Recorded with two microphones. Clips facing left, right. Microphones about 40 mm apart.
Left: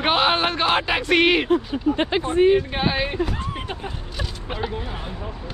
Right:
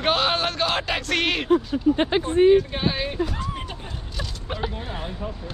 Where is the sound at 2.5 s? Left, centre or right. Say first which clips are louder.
Even; centre.